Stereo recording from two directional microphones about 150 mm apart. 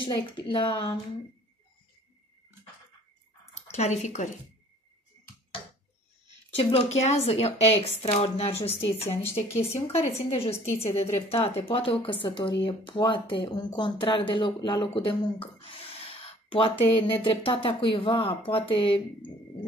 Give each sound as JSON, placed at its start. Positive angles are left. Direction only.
{"t": 0.0, "sound": "speech", "side_deg": 30}
{"t": 3.7, "sound": "speech", "side_deg": 50}
{"t": 6.6, "sound": "speech", "side_deg": 45}